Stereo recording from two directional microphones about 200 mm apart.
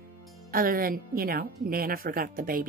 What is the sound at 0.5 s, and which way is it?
A woman's voice, 45° right (ahead or behind).